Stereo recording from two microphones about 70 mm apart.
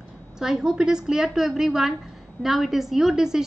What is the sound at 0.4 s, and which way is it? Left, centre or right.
A woman's voice, centre.